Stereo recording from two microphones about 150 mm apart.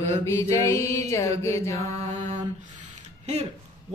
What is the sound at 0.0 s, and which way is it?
Mantra, 15° left (ahead or behind).